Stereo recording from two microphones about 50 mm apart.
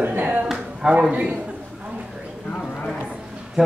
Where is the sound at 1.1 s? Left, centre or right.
Right.